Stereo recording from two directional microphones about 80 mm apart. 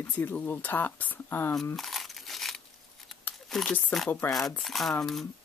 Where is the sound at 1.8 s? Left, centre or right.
Centre.